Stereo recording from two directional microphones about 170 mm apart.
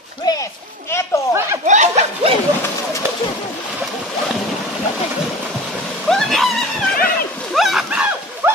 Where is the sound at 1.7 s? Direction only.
45° right (ahead or behind).